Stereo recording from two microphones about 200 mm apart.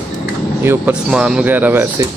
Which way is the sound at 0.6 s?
10° right (ahead or behind).